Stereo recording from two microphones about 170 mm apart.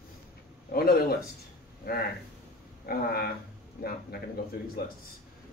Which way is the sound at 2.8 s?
60° left (ahead or behind).